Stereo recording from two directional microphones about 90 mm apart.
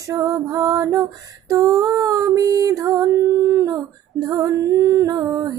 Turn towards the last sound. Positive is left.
turn(degrees=-45)  # may be behind; listen again after turning